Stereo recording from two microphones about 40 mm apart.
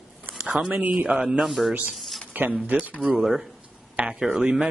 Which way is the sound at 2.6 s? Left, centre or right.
Right.